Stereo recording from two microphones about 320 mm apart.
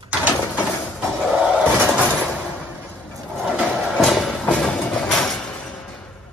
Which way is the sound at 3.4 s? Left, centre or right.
Centre.